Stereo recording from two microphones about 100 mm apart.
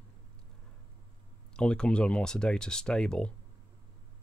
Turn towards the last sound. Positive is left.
turn(degrees=10)  # may be behind; listen again after turning